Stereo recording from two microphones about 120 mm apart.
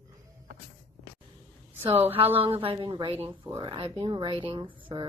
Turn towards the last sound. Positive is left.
turn(degrees=-45)  # may be behind; listen again after turning